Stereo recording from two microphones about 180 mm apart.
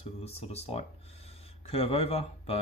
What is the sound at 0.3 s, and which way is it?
Speech, 35° left (ahead or behind).